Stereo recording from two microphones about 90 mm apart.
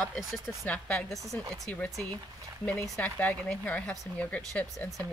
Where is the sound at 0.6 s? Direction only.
15° left (ahead or behind).